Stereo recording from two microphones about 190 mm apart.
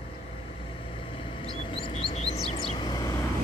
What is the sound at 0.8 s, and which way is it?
Vehicle, 30° left (ahead or behind).